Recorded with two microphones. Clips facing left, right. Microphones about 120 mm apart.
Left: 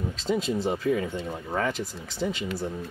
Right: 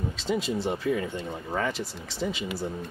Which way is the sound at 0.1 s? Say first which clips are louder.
Left 2 dB; centre (ahead or behind).